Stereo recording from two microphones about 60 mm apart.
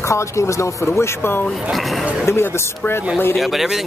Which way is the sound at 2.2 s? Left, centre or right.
Left.